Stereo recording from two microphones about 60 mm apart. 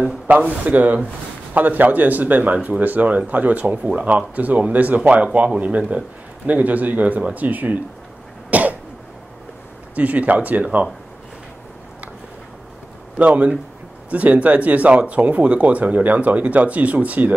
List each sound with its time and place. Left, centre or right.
0.0 s speech: right
8.5 s cough: right
9.9 s speech: right
13.2 s speech: right